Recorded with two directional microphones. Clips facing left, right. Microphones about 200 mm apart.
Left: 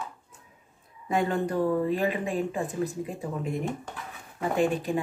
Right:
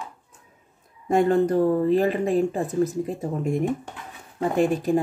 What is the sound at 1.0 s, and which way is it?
Speech, 45° right (ahead or behind).